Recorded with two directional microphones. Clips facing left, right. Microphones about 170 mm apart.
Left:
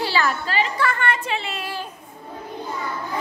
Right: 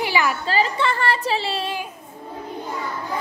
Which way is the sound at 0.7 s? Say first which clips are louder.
Right 1 dB; 30° right (ahead or behind).